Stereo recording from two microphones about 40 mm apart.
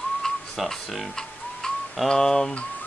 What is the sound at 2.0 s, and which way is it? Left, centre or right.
Speech, centre.